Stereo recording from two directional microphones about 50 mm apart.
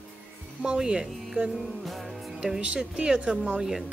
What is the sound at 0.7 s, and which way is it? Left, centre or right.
Speech, centre.